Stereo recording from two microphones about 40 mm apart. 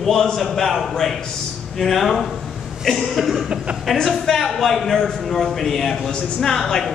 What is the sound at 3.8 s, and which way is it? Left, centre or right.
A man's voice, centre.